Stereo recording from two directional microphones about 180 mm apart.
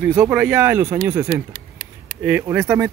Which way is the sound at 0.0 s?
5° right (ahead or behind).